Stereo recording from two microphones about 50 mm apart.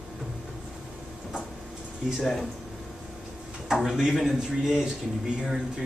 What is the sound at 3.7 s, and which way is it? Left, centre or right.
Speech, centre.